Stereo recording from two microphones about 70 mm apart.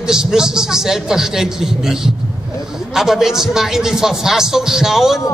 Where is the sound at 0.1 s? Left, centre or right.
Centre.